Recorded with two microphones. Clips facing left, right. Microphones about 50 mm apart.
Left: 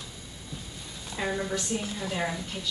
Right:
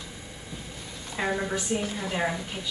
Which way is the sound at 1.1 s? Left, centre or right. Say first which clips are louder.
Right 2 dB; centre.